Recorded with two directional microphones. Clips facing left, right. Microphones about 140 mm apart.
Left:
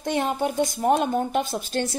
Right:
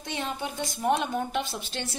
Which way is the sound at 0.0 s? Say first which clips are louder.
Left 9 dB; 50° left (ahead or behind).